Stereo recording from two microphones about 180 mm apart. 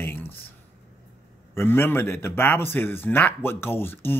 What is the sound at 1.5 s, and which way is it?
Speech, 10° left (ahead or behind).